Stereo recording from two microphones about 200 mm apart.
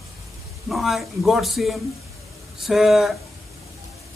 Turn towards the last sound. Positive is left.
turn(degrees=0)  # may be behind; listen again after turning